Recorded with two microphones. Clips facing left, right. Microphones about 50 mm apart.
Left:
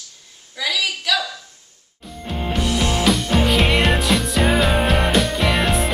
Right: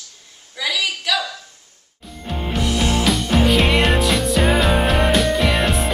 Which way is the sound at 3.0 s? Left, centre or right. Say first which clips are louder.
Even; centre.